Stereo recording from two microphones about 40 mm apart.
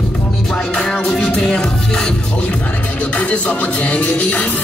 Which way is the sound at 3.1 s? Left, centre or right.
Left.